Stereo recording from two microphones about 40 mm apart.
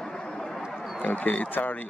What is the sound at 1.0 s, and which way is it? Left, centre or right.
Speech, left.